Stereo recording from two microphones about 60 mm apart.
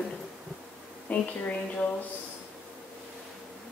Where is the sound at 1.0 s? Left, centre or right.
Left.